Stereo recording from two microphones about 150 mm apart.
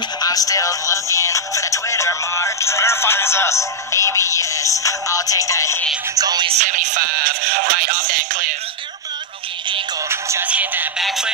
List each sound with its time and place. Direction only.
0.2 s music: 25° left (ahead or behind)
6.1 s music: 25° right (ahead or behind)
6.6 s speech: 55° right (ahead or behind)
10.0 s music: 20° right (ahead or behind); by 11.3 s centre (ahead or behind)